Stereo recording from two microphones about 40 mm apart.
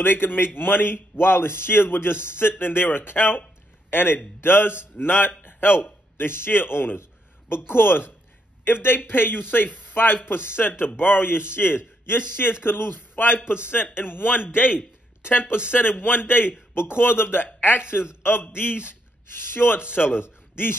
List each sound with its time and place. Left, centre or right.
0.0 s a man's voice: left
5.4 s a sound: left
6.1 s a man's voice: left
15.7 s speech: left
16.7 s a man's voice: left